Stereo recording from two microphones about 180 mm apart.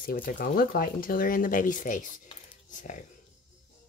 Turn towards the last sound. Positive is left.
turn(degrees=45)  # may be behind; listen again after turning